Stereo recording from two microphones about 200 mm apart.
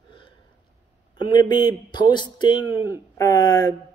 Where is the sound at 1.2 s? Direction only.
20° left (ahead or behind).